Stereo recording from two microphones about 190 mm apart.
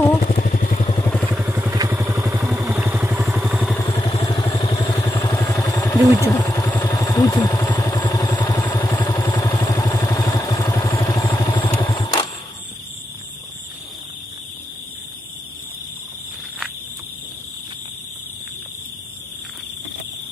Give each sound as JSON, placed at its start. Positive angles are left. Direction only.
{"t": 0.3, "sound": "vehicle", "side_deg": 40}
{"t": 1.1, "sound": "vehicle", "side_deg": -5}
{"t": 2.2, "sound": "vehicle", "side_deg": 0}
{"t": 3.9, "sound": "vehicle", "side_deg": 30}
{"t": 4.5, "sound": "vehicle", "side_deg": 30}
{"t": 4.7, "sound": "vehicle", "side_deg": 15}